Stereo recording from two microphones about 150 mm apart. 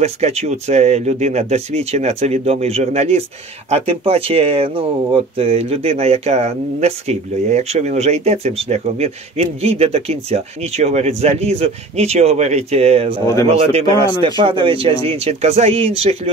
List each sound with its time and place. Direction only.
0.0 s speech: 45° right (ahead or behind)